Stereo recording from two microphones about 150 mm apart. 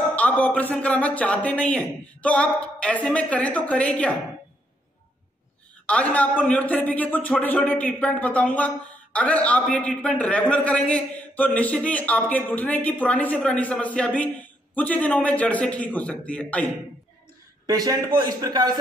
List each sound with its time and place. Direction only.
0.1 s speech: 10° left (ahead or behind)
5.9 s speech: 10° left (ahead or behind)
17.6 s a man's voice: 25° right (ahead or behind)